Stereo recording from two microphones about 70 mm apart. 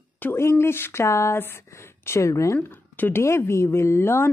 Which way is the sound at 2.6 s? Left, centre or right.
Left.